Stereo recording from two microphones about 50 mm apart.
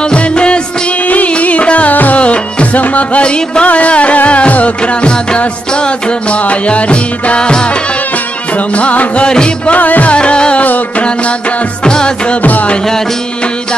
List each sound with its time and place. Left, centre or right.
0.0 s music: centre
9.8 s music: left
10.1 s music: centre
10.6 s music: left
11.8 s music: centre
12.4 s music: left